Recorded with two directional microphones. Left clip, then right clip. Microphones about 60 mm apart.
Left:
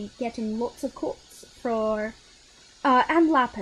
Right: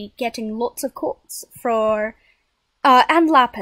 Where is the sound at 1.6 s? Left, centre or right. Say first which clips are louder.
Right 7 dB; right.